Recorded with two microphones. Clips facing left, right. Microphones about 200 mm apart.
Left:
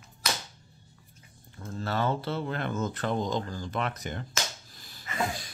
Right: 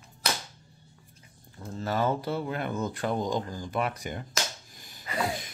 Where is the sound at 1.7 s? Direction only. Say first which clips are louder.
Right 2 dB; 15° right (ahead or behind).